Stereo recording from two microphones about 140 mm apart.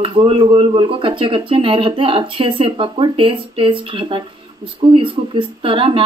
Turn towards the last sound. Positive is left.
turn(degrees=-40)  # may be behind; listen again after turning